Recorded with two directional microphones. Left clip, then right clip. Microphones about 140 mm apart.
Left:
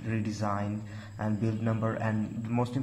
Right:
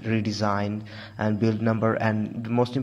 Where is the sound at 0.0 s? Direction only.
35° right (ahead or behind).